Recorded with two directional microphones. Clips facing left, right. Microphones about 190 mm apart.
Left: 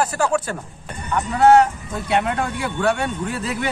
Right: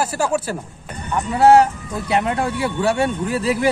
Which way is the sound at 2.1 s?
Centre (ahead or behind).